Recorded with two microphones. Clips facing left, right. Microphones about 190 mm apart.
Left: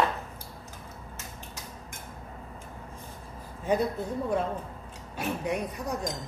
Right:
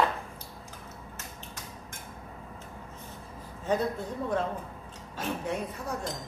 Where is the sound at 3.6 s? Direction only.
10° left (ahead or behind).